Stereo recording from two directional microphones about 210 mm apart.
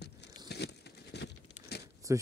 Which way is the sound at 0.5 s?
50° left (ahead or behind).